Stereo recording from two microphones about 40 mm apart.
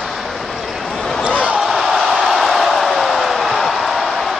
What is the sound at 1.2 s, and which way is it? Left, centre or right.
Basketball bounce, right.